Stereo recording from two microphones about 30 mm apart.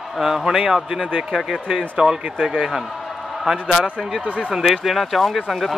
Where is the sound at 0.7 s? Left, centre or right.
Centre.